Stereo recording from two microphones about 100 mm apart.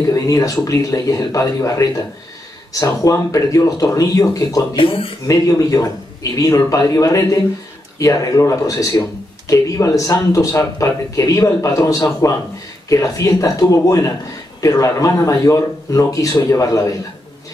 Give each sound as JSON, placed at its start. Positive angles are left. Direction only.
{"t": 0.1, "sound": "speech", "side_deg": 35}
{"t": 4.7, "sound": "speech", "side_deg": 65}
{"t": 5.3, "sound": "speech", "side_deg": 35}